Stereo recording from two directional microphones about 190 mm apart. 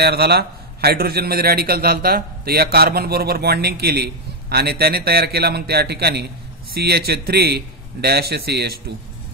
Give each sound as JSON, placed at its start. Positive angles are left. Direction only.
{"t": 0.0, "sound": "a man's voice", "side_deg": -55}